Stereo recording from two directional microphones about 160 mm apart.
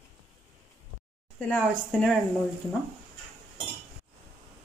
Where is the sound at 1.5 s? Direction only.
Centre (ahead or behind).